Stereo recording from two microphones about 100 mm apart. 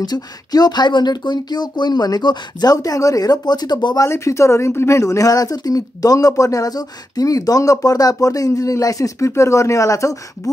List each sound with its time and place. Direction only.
0.0 s speech: 40° left (ahead or behind)
4.1 s speech: 30° left (ahead or behind)